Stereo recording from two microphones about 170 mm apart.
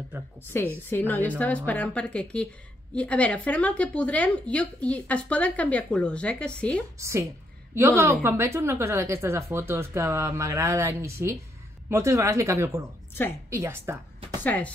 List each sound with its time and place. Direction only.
0.4 s a woman's voice: 15° left (ahead or behind)
7.0 s a woman's voice: 15° right (ahead or behind)
14.4 s speech: 10° left (ahead or behind)